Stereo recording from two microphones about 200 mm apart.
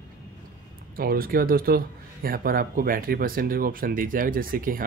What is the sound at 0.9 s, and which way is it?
Speech, 45° right (ahead or behind).